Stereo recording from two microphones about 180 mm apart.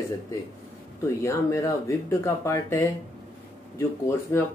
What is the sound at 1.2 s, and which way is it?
Speech, 15° left (ahead or behind).